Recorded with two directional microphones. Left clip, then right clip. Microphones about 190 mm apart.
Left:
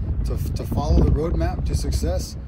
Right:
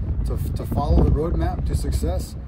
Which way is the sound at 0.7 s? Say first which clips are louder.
Right 2 dB; 25° left (ahead or behind).